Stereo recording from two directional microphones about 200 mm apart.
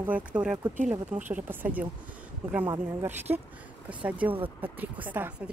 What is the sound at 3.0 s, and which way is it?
Speech, 10° right (ahead or behind).